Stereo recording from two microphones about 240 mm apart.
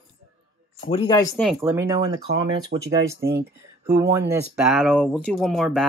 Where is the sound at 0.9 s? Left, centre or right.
Centre.